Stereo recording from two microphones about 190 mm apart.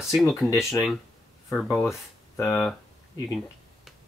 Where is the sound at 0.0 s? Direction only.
Centre (ahead or behind).